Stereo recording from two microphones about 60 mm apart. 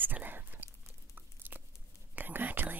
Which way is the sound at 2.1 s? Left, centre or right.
Right.